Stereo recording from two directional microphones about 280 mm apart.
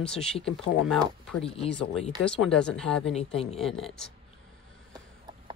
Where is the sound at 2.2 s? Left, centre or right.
Centre.